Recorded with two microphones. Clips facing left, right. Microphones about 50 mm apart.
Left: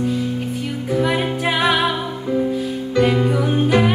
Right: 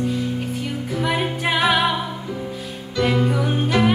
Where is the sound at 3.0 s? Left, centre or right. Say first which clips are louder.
Left 1 dB; centre.